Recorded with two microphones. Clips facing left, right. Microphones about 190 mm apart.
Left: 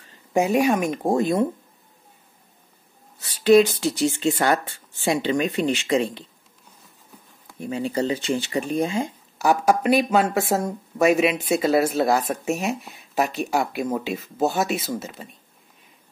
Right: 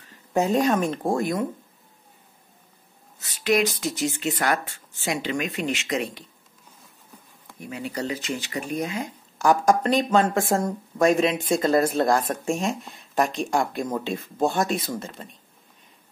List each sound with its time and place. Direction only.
0.3 s speech: 10° left (ahead or behind)
3.2 s speech: 30° left (ahead or behind)
7.5 s speech: 30° left (ahead or behind)
9.4 s speech: 10° left (ahead or behind)